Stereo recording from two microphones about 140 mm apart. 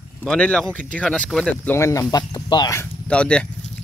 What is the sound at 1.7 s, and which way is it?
Speech, 20° left (ahead or behind).